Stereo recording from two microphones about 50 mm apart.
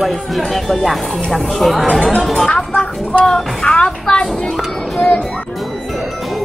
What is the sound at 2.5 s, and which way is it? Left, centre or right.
Music, left.